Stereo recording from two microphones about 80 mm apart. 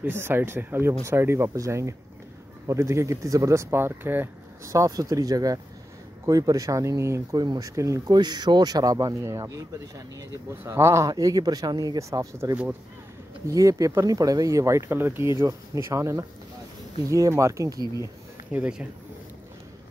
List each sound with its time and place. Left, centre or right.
0.0 s speech: right
4.7 s speech: right
7.3 s speech: right
8.1 s speech: right
9.2 s speech: right
14.9 s speech: right
18.5 s speech: centre